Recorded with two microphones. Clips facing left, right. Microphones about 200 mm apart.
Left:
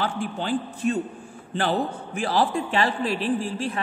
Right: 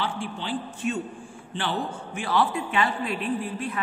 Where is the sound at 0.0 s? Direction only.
45° left (ahead or behind).